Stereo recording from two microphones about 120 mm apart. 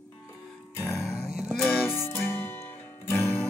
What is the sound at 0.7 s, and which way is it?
Music, 20° left (ahead or behind).